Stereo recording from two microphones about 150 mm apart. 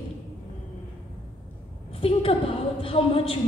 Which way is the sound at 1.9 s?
40° left (ahead or behind).